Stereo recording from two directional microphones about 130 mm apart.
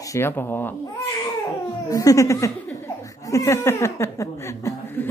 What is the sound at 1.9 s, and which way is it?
Speech, 25° left (ahead or behind).